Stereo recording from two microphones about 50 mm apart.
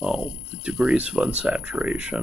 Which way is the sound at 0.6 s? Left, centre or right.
Centre.